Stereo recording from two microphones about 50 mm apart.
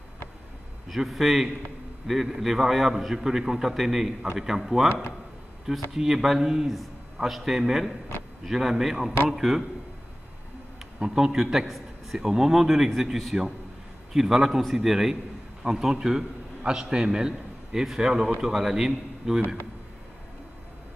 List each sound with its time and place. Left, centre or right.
0.8 s a man's voice: centre
5.9 s a man's voice: centre
6.7 s a man's voice: centre
11.0 s a man's voice: centre